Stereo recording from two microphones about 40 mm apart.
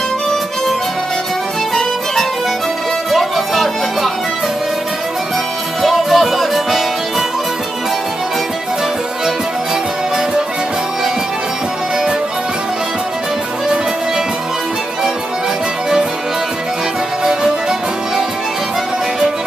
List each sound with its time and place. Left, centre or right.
3.1 s music: centre
5.8 s music: centre
17.2 s music: centre